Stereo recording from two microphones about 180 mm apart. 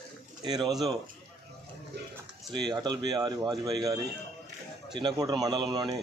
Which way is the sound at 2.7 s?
25° right (ahead or behind).